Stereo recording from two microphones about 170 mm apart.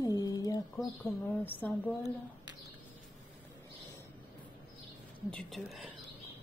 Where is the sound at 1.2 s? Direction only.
10° left (ahead or behind).